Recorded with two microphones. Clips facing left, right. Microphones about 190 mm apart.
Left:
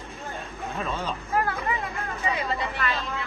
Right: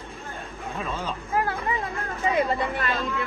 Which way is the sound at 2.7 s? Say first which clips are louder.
Right 2 dB; 50° right (ahead or behind).